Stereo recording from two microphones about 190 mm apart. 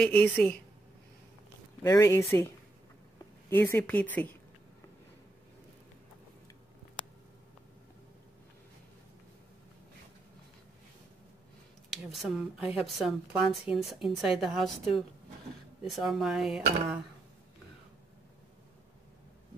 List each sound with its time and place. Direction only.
0.0 s a woman's voice: 5° left (ahead or behind)
1.8 s a woman's voice: 15° left (ahead or behind)
11.9 s speech: centre (ahead or behind)